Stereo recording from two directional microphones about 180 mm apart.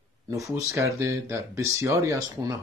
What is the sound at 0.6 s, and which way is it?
Speech, 15° right (ahead or behind).